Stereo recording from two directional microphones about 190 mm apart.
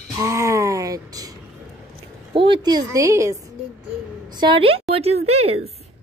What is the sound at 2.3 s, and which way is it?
A woman's voice, 25° right (ahead or behind).